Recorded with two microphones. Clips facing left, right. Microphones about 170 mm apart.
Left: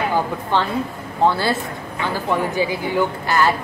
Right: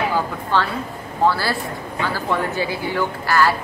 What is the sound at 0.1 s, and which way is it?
Speech, 20° left (ahead or behind).